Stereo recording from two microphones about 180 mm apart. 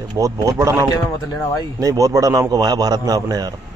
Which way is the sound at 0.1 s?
15° right (ahead or behind).